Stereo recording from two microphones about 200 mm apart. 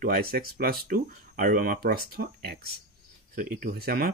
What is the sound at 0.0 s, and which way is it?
Speech, 50° right (ahead or behind).